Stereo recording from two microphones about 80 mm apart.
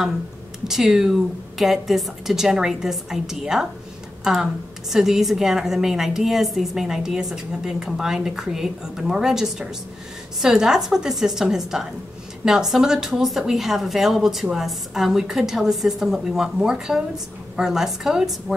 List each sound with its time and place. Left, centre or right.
0.7 s a woman's voice: centre